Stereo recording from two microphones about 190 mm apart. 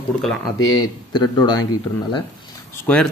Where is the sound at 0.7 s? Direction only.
20° left (ahead or behind).